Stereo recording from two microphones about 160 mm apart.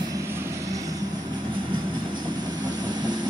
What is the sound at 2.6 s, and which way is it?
Vehicle, 25° right (ahead or behind).